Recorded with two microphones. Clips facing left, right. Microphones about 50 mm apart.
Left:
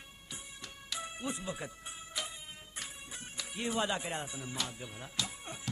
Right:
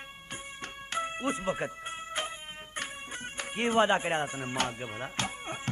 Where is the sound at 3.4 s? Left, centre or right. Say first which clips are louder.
Right 9 dB; right.